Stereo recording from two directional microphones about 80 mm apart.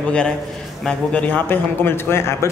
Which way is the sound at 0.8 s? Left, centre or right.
Centre.